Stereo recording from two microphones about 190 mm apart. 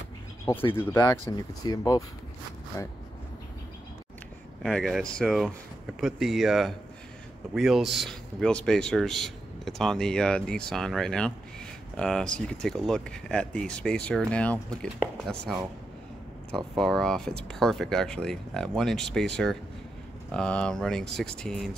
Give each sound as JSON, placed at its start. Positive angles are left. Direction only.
{"t": 0.9, "sound": "speech", "side_deg": 20}
{"t": 4.6, "sound": "speech", "side_deg": 0}